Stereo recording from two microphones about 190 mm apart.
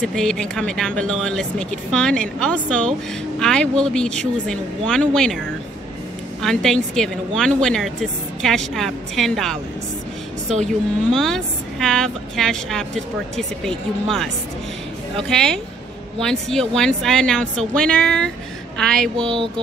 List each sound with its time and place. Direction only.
0.0 s speech: 5° left (ahead or behind)
6.4 s speech: centre (ahead or behind)
19.3 s mantra: 25° right (ahead or behind)